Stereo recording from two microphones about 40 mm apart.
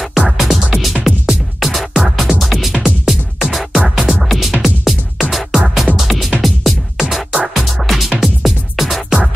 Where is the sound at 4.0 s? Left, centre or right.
Centre.